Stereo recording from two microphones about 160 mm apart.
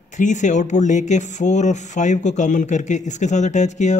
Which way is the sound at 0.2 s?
50° left (ahead or behind).